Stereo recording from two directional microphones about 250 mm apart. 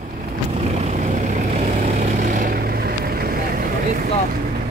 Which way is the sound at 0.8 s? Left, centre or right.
Right.